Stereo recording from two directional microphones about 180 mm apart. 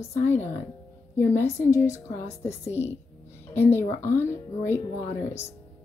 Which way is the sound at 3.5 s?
15° left (ahead or behind).